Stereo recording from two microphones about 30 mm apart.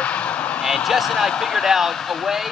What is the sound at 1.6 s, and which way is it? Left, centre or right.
Speech, centre.